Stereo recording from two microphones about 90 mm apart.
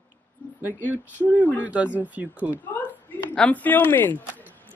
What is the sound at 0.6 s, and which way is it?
Speech, 20° right (ahead or behind).